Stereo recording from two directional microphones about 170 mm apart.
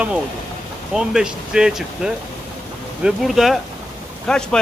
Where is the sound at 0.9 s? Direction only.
5° right (ahead or behind).